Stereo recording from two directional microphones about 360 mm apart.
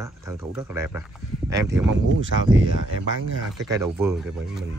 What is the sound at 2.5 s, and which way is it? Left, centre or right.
Speech, right.